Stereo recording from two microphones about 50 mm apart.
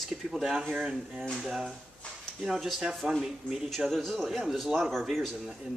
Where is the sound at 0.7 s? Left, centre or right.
Centre.